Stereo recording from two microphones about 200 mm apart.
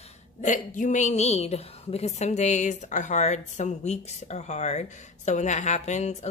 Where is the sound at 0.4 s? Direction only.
40° left (ahead or behind).